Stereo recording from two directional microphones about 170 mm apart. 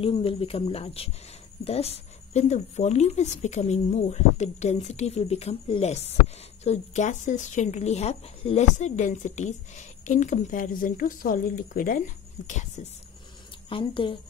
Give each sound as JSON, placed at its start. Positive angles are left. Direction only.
{"t": 0.0, "sound": "speech", "side_deg": 35}
{"t": 12.4, "sound": "speech", "side_deg": 45}
{"t": 13.7, "sound": "speech", "side_deg": 30}